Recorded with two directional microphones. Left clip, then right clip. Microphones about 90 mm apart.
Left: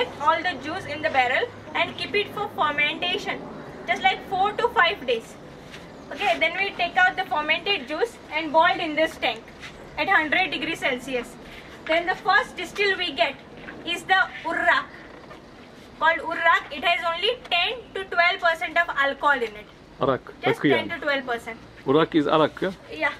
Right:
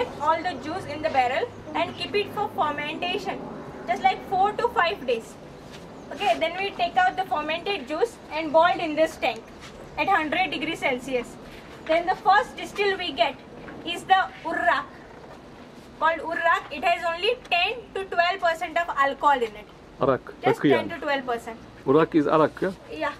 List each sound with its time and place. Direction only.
0.3 s a woman's voice: 5° right (ahead or behind)
6.2 s a woman's voice: 10° right (ahead or behind)
8.5 s a woman's voice: 15° right (ahead or behind)
11.9 s a woman's voice: 20° left (ahead or behind)
12.8 s a woman's voice: 10° left (ahead or behind)
16.1 s a woman's voice: 15° left (ahead or behind)
16.4 s a woman's voice: centre (ahead or behind)
20.8 s a woman's voice: 5° left (ahead or behind)
22.6 s speech: 15° left (ahead or behind)